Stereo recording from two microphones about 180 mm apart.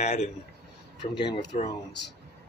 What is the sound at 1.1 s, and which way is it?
Speech, 25° left (ahead or behind).